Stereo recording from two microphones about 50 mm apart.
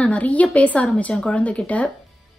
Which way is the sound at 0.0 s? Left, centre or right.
Left.